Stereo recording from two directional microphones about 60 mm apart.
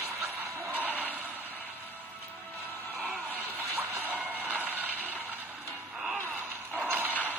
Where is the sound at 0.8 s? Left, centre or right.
Left.